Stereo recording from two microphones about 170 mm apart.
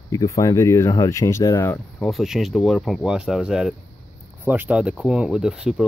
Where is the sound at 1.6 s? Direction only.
10° left (ahead or behind).